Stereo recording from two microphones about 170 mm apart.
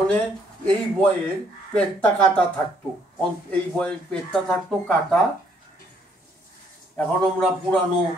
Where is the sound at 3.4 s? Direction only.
5° left (ahead or behind).